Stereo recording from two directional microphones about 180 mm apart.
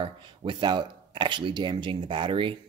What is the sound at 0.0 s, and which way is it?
Speech, 30° right (ahead or behind).